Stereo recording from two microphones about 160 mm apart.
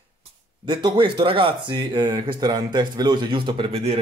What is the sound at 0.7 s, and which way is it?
Speech, 30° right (ahead or behind).